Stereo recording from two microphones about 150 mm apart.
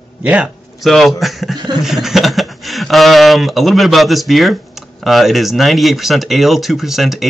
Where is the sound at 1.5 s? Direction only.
30° right (ahead or behind).